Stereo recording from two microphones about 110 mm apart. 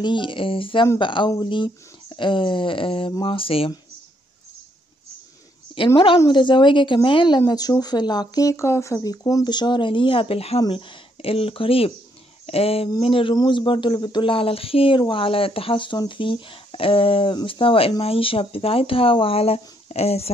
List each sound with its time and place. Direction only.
0.0 s speech: 45° left (ahead or behind)
3.1 s speech: 35° left (ahead or behind)
3.3 s speech: 60° left (ahead or behind)
6.3 s speech: 45° left (ahead or behind); by 10.6 s 65° left (ahead or behind)
10.7 s speech: 50° left (ahead or behind); by 20.2 s 70° left (ahead or behind)